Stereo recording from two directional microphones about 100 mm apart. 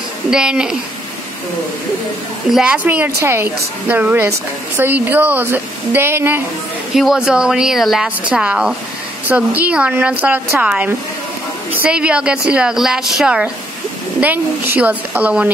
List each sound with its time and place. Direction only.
0.3 s speech: 10° right (ahead or behind)
2.5 s a woman's voice: 10° right (ahead or behind)
6.9 s a woman's voice: 5° right (ahead or behind)
14.2 s speech: 20° right (ahead or behind)